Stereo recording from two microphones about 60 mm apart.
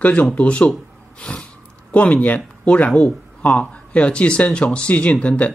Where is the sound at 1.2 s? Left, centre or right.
Centre.